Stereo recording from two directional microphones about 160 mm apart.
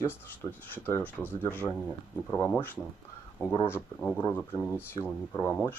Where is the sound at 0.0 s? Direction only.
15° left (ahead or behind).